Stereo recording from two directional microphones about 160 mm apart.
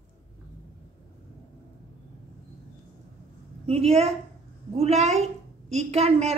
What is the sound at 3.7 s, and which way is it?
A woman's voice, 40° right (ahead or behind).